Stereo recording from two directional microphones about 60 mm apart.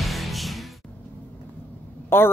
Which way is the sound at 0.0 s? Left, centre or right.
Centre.